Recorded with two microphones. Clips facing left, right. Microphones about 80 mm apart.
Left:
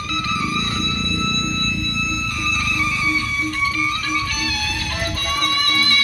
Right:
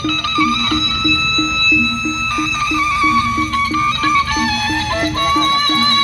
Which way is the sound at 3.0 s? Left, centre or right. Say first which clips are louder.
Right 9 dB; right.